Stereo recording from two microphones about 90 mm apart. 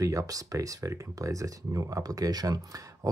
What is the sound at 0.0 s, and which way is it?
Speech, 35° right (ahead or behind).